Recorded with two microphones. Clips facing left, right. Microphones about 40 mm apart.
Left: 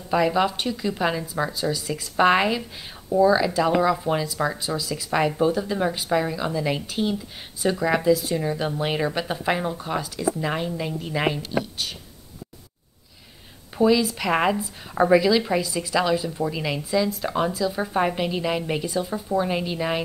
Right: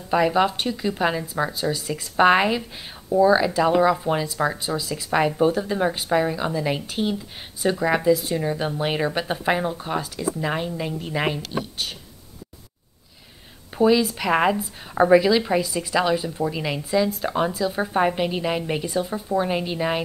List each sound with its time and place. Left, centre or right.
0.1 s speech: centre
13.7 s speech: centre